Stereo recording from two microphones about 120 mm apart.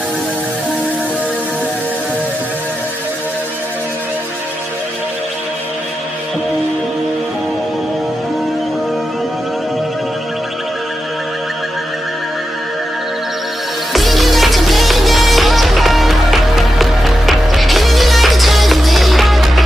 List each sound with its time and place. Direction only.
13.9 s music: centre (ahead or behind)